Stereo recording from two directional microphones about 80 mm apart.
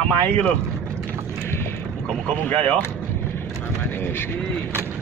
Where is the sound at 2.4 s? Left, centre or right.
Left.